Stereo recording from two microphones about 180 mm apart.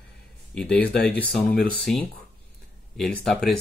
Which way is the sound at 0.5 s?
5° left (ahead or behind).